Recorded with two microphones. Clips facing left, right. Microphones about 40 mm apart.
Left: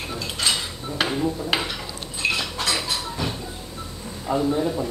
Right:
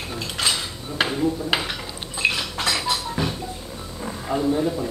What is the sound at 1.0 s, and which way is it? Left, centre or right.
Speech, centre.